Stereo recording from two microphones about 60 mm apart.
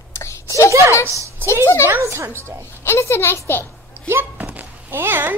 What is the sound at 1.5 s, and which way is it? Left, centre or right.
Speech, left.